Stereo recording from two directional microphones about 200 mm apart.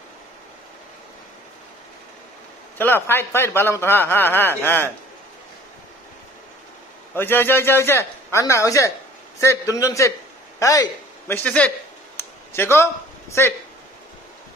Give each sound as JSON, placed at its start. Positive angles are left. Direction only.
{"t": 2.8, "sound": "a man's voice", "side_deg": 10}
{"t": 7.2, "sound": "a man's voice", "side_deg": 10}
{"t": 12.2, "sound": "a sound", "side_deg": 10}
{"t": 13.3, "sound": "a man's voice", "side_deg": 15}